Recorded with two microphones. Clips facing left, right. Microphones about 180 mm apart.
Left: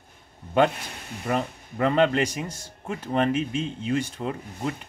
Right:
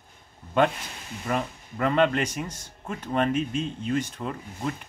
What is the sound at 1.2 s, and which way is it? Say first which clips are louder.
Speech: left 2 dB; 20° left (ahead or behind).